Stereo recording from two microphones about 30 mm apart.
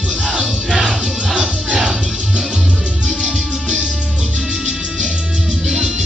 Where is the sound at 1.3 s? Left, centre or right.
Centre.